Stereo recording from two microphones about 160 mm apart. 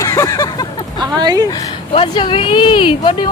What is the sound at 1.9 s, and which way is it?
Speech, 30° left (ahead or behind).